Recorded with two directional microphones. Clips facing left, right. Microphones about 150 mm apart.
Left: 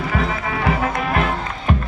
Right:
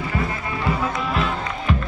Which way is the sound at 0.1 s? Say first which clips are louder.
Left 3 dB; 90° left.